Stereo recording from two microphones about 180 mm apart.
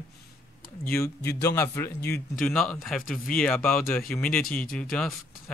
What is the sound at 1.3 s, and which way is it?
Speech, 15° left (ahead or behind).